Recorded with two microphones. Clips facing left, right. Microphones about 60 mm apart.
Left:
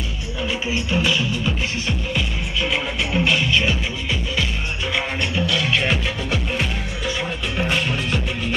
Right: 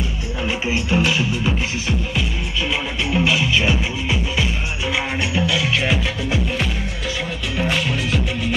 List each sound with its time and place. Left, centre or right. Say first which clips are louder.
0.4 s music: right 2 dB; right
2.1 s music: right 1 dB; centre